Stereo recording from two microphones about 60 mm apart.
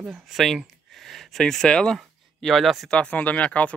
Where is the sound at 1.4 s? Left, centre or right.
Centre.